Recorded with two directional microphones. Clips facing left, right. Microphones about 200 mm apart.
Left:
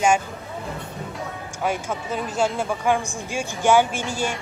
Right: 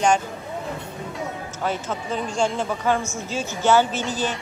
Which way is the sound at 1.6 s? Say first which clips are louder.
Left 1 dB; 10° left (ahead or behind).